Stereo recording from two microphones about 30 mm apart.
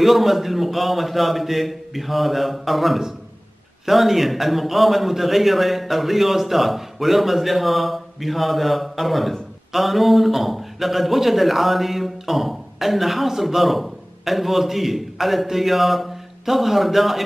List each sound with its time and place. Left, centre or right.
0.0 s a man's voice: centre